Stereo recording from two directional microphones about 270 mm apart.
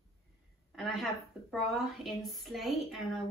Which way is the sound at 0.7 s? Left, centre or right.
Centre.